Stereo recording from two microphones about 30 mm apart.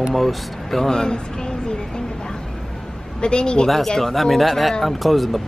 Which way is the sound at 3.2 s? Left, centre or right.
Left.